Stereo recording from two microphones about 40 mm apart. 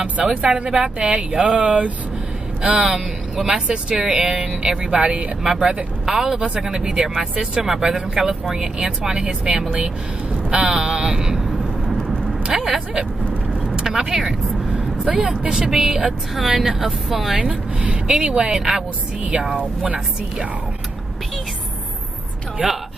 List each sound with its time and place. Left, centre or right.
0.0 s speech: right
0.7 s speech: centre
4.2 s speech: centre
4.8 s speech: right
6.0 s speech: centre
11.1 s speech: centre
12.4 s speech: centre
13.2 s vehicle: right
13.7 s speech: centre
16.1 s speech: centre
17.4 s speech: right
18.5 s speech: centre
19.3 s speech: right